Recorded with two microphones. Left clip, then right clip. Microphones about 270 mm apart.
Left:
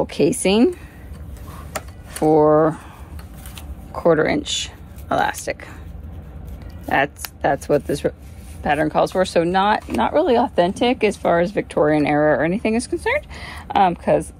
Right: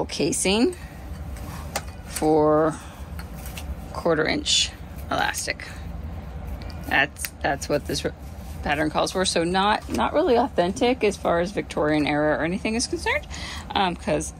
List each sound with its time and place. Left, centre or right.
0.0 s speech: left
2.3 s speech: left
3.9 s speech: left
6.9 s speech: left